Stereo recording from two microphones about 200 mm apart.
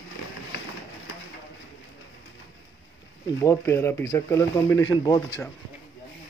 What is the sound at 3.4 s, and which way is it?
Speech, 15° left (ahead or behind).